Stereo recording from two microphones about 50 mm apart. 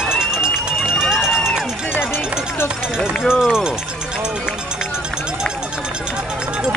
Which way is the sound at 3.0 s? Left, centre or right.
Centre.